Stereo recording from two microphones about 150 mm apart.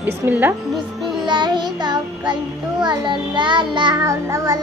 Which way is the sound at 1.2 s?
30° right (ahead or behind).